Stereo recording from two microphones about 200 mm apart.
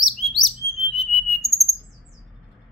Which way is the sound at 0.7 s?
Centre (ahead or behind).